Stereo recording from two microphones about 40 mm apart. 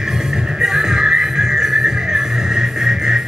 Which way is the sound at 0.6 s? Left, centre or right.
Centre.